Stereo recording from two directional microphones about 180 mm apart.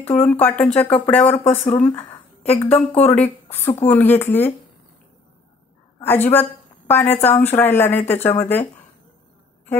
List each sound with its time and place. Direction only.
0.0 s speech: 10° left (ahead or behind)
1.6 s speech: 35° left (ahead or behind)
2.0 s a woman's voice: 10° left (ahead or behind)
5.9 s speech: 10° left (ahead or behind)